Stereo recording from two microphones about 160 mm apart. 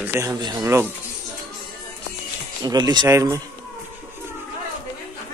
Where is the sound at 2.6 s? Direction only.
25° right (ahead or behind).